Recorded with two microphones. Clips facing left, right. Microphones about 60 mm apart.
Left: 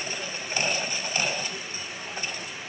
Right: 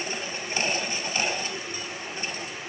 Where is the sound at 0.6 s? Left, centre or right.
Right.